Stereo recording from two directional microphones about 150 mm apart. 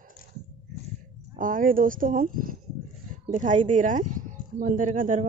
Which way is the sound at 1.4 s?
65° right (ahead or behind).